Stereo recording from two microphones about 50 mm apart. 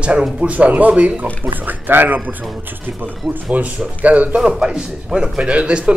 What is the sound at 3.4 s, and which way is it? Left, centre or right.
Speech, right.